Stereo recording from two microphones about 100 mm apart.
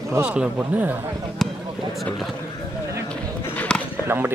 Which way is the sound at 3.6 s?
10° left (ahead or behind).